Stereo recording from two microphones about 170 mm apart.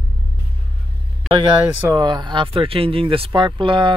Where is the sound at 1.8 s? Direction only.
25° right (ahead or behind).